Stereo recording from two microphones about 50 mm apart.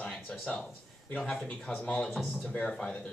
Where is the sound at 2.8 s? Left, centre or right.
Centre.